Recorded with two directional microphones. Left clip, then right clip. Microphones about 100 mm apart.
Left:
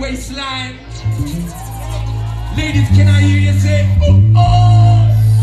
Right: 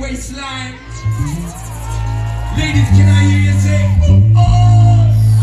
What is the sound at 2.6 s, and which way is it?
Music, 10° left (ahead or behind).